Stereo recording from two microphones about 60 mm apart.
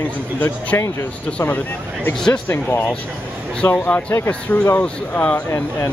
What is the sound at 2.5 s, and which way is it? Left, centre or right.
Speech, left.